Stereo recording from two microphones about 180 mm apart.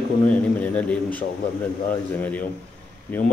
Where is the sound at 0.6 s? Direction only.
10° left (ahead or behind).